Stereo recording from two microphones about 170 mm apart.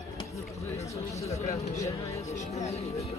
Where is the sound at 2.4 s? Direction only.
40° left (ahead or behind).